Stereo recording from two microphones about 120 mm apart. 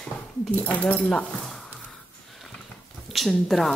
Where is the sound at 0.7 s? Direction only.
15° left (ahead or behind).